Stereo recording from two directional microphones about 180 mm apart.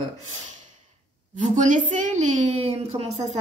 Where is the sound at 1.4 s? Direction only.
45° right (ahead or behind).